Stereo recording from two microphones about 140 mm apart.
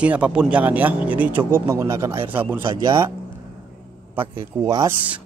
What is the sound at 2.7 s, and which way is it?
Speech, 30° right (ahead or behind).